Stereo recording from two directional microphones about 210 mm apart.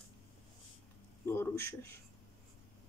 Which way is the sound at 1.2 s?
10° left (ahead or behind).